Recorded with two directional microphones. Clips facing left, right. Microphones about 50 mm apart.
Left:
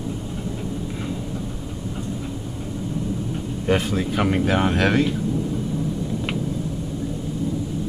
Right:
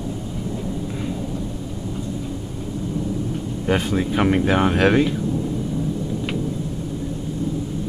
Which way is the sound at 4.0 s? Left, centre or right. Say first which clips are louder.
Right 2 dB; centre.